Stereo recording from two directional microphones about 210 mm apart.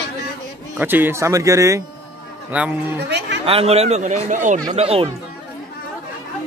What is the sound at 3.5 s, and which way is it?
Speech, 30° right (ahead or behind).